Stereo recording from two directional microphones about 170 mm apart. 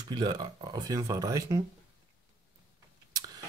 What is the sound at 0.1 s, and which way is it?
Speech, 25° right (ahead or behind).